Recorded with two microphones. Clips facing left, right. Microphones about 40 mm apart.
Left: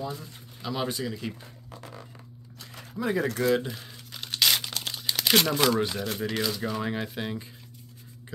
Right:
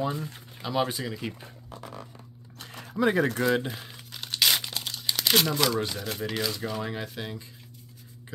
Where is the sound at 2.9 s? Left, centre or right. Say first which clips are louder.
Right 4 dB; right.